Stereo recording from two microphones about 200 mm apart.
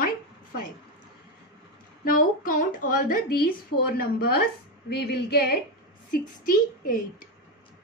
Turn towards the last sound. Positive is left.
turn(degrees=45)  # may be behind; listen again after turning